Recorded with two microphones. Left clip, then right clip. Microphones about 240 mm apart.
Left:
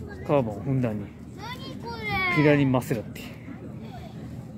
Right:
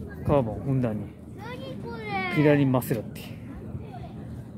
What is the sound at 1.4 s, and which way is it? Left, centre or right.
Children playing, left.